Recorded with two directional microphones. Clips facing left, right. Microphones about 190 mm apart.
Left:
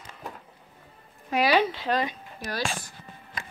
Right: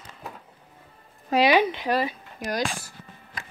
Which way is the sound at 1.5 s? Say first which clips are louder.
Right 2 dB; 15° right (ahead or behind).